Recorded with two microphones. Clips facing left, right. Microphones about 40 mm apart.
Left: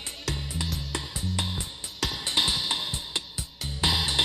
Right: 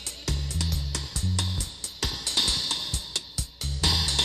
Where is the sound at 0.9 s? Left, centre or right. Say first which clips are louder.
Left 3 dB; left.